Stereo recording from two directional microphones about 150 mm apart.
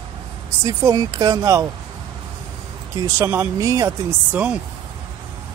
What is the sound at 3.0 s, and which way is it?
Speech, 20° right (ahead or behind).